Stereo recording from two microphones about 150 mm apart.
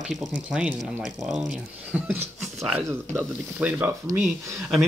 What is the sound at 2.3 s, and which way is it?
Speech, centre (ahead or behind).